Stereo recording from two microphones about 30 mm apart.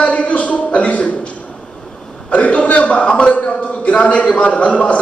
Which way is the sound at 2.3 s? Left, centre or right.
Left.